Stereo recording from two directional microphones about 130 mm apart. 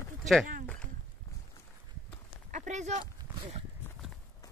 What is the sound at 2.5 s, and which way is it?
Speech, 65° right (ahead or behind).